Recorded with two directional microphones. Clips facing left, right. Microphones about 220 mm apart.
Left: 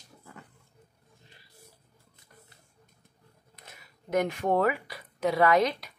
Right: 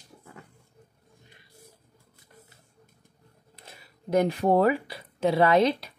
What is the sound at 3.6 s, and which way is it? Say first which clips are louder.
Speech: right 3 dB; 30° right (ahead or behind).